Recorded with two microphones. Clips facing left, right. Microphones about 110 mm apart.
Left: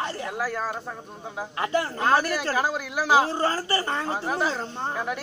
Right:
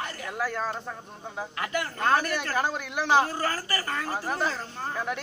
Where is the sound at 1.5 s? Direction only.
30° left (ahead or behind).